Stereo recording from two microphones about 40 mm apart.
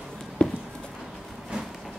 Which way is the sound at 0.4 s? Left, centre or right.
Left.